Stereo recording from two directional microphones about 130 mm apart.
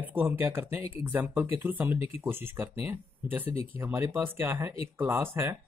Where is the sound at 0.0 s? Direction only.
15° right (ahead or behind).